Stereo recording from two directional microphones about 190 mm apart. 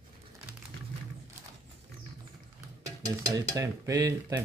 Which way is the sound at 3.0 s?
20° right (ahead or behind).